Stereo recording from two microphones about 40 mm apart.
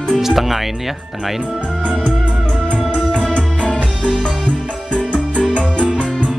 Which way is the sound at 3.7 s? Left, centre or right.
Left.